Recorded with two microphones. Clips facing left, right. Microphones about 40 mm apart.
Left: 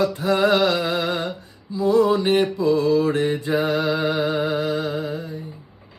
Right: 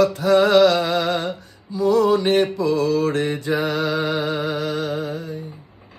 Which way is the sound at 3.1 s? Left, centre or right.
Right.